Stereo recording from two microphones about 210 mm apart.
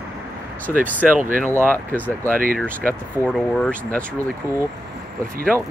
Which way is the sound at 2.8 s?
5° left (ahead or behind).